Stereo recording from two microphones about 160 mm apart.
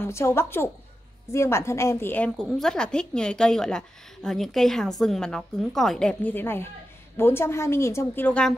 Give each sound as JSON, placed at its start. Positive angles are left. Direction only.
{"t": 0.0, "sound": "a woman's voice", "side_deg": 15}